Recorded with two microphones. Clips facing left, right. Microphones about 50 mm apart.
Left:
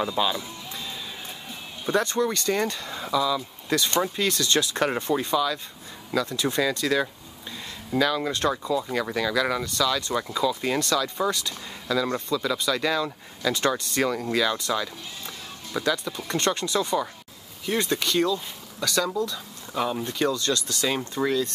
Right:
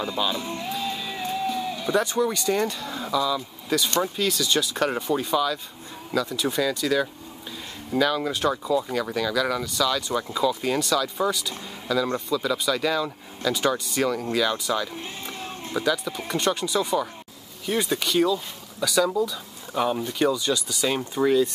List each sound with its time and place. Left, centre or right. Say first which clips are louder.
0.4 s music: right 8 dB; right
2.0 s speech: even; centre
3.9 s speech: even; centre
4.3 s speech: even; centre
8.9 s speech: even; centre
9.7 s speech: right 1 dB; centre